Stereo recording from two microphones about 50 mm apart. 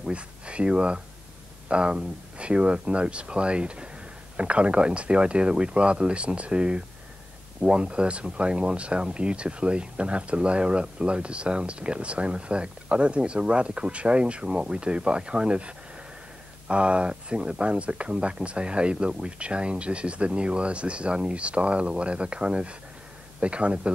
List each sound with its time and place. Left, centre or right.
0.0 s speech: right